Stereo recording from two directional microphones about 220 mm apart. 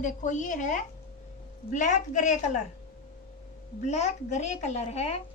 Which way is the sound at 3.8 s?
30° left (ahead or behind).